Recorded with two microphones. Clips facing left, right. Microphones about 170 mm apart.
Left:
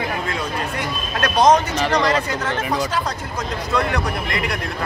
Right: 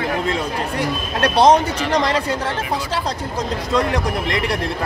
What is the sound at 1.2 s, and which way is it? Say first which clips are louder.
Speech: right 2 dB; 30° right (ahead or behind).